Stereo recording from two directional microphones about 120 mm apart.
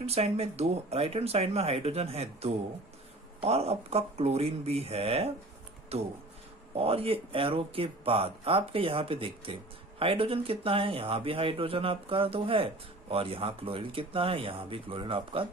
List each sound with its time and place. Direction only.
0.0 s speech: 60° right (ahead or behind)